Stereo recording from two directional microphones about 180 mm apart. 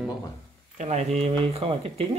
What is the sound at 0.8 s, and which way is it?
Speech, 40° right (ahead or behind).